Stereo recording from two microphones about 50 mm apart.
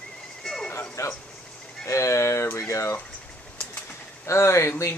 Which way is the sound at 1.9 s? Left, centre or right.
Left.